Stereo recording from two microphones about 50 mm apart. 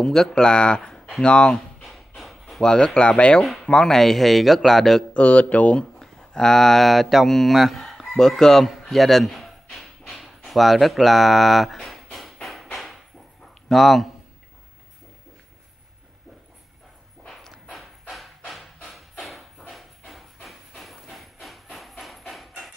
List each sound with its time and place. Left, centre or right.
0.0 s speech: centre
1.9 s a sound: centre
2.6 s a man's voice: centre
5.1 s speech: left
5.9 s a man's voice: centre
12.7 s a sound: centre
13.7 s a man's voice: centre
17.3 s walk: centre
18.9 s a sound: centre
19.7 s hiss: centre
22.3 s hammer: centre